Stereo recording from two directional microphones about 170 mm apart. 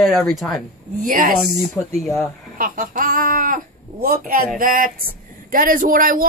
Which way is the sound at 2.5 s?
55° right (ahead or behind).